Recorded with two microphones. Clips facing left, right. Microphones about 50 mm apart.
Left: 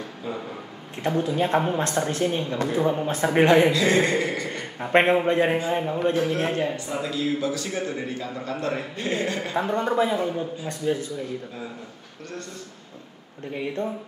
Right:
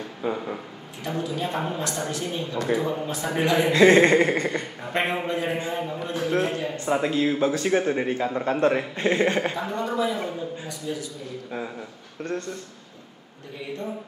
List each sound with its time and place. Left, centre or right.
0.2 s a sound: right
1.0 s a woman's voice: left
3.7 s speech: right
4.9 s a woman's voice: left
6.9 s speech: right
9.6 s a woman's voice: left